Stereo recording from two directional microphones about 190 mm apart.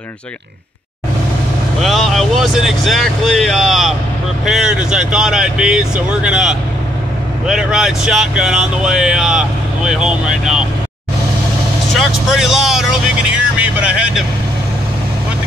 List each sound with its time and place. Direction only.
1.8 s speech: centre (ahead or behind)
12.0 s speech: centre (ahead or behind)
13.6 s vehicle: 5° right (ahead or behind)